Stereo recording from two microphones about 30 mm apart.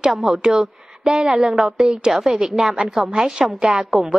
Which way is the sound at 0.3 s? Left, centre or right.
Right.